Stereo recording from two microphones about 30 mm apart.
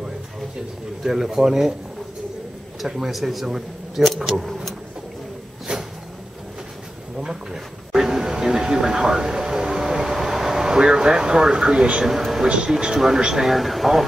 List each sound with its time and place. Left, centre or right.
1.0 s speech: centre
2.8 s speech: centre
5.7 s a sound: right
7.9 s a sound: centre
10.1 s speech: centre; by 11.9 s right
12.0 s speech: centre
13.5 s speech: centre